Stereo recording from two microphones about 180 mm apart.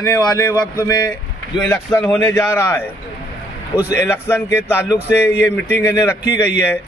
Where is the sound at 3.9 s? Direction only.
15° left (ahead or behind).